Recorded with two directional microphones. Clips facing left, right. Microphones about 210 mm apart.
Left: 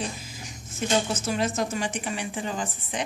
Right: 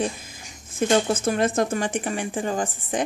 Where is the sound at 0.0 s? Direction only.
50° right (ahead or behind).